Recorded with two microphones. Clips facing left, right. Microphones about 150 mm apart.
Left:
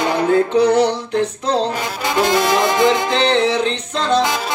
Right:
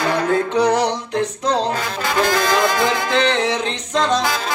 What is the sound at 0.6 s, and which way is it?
Music, 35° right (ahead or behind).